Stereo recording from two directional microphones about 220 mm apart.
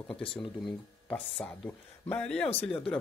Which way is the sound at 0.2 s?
25° left (ahead or behind).